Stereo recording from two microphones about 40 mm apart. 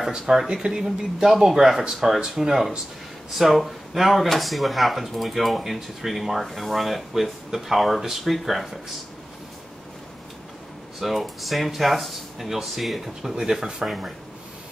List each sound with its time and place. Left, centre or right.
0.3 s speech: centre
0.8 s speech: centre
11.0 s speech: centre
13.8 s speech: centre